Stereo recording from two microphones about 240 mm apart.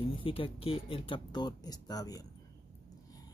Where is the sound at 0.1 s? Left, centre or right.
Left.